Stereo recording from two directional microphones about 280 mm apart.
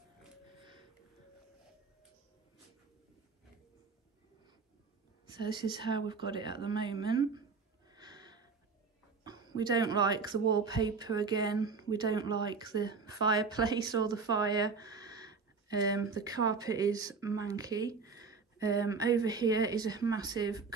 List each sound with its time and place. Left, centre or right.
5.3 s speech: centre
7.9 s a sound: centre
9.6 s speech: centre